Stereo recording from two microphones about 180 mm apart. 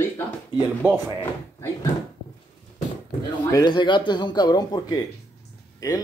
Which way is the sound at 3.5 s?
25° left (ahead or behind).